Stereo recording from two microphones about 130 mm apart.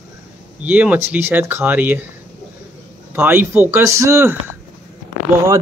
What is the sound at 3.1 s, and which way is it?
A man's voice, 15° right (ahead or behind).